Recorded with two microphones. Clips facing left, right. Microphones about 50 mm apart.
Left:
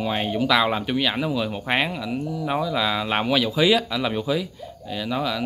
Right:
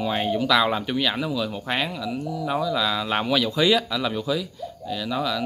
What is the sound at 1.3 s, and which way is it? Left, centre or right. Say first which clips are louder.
Speech: left 2 dB; left.